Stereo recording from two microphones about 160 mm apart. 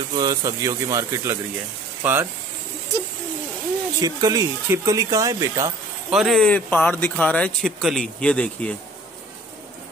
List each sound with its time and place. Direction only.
0.1 s speech: 25° right (ahead or behind)
4.0 s speech: 25° right (ahead or behind)
6.0 s speech: centre (ahead or behind)